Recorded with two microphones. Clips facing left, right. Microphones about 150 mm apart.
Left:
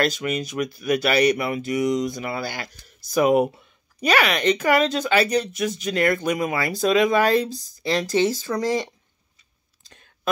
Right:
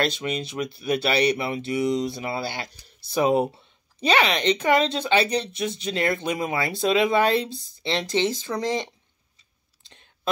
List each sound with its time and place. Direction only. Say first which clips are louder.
0.0 s speech: left 2 dB; 25° right (ahead or behind)
9.8 s clicking: left 2 dB; 25° right (ahead or behind)